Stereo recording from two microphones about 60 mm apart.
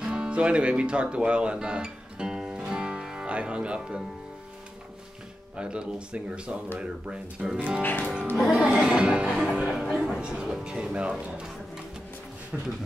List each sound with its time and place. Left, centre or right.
0.0 s music: centre
5.6 s speech: centre